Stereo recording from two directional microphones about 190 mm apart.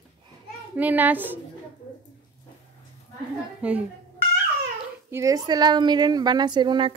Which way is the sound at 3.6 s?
5° right (ahead or behind).